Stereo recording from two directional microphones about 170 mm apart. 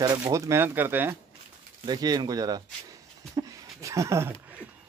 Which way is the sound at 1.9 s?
25° right (ahead or behind).